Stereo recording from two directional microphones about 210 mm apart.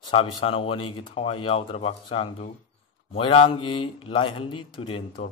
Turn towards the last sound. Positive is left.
turn(degrees=25)  # may be behind; listen again after turning